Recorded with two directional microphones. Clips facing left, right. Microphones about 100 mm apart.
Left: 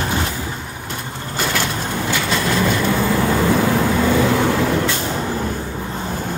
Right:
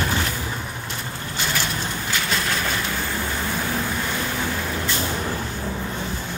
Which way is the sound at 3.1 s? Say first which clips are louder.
Left 10 dB; 90° left.